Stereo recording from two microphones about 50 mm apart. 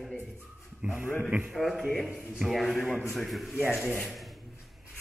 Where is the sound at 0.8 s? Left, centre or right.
Right.